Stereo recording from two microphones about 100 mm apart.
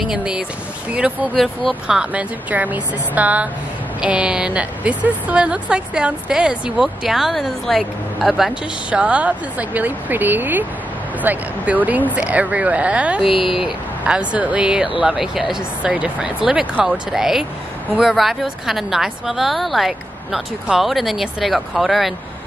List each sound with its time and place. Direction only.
0.0 s a woman's voice: 5° right (ahead or behind)
1.3 s a woman's voice: centre (ahead or behind)
13.3 s speech: 60° left (ahead or behind)
13.6 s a woman's voice: 5° right (ahead or behind)